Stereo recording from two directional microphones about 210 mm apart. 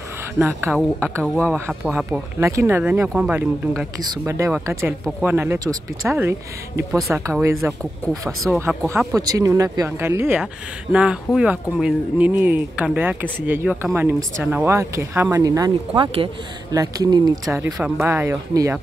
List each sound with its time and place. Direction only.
0.9 s speech: 10° right (ahead or behind)
1.2 s speech: 5° left (ahead or behind); by 6.3 s 10° right (ahead or behind)
6.9 s speech: centre (ahead or behind)
7.2 s speech: 15° right (ahead or behind)
17.7 s speech: centre (ahead or behind)
18.0 s speech: 10° right (ahead or behind)